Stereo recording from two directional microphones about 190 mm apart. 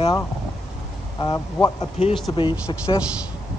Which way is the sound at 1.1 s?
25° left (ahead or behind).